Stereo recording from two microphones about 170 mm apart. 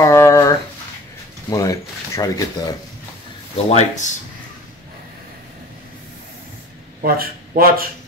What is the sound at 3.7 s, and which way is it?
Speech, 45° left (ahead or behind).